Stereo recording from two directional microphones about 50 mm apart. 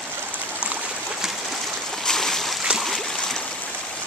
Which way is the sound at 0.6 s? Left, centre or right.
Right.